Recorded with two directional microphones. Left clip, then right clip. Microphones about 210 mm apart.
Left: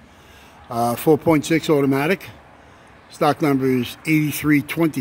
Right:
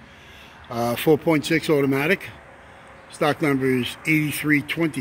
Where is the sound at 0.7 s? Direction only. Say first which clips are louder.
Left 2 dB; 10° left (ahead or behind).